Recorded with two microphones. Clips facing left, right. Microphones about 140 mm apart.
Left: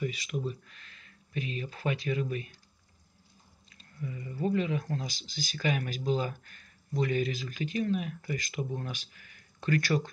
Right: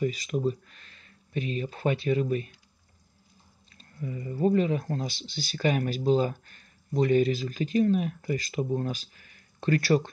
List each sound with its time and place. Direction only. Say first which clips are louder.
0.0 s speech: right 7 dB; 40° right (ahead or behind)
3.7 s speech: right 4 dB; 35° right (ahead or behind)
5.2 s speech: right 2 dB; 45° left (ahead or behind)
5.5 s speech: right 5 dB; 40° right (ahead or behind)